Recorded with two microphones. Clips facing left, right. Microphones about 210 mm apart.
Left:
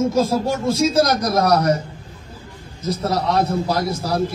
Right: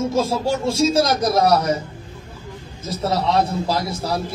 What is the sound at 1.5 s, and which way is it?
Speech, 50° left (ahead or behind).